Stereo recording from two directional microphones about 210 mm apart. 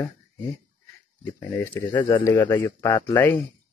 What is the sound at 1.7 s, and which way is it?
Speech, 20° left (ahead or behind).